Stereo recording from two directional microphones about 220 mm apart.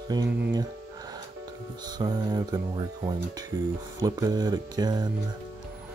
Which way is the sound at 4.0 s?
15° right (ahead or behind).